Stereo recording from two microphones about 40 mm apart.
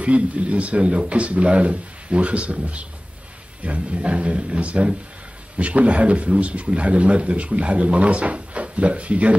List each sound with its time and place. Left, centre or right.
0.0 s speech: right